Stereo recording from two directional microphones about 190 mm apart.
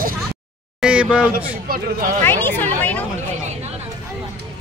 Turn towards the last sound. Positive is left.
turn(degrees=10)  # may be behind; listen again after turning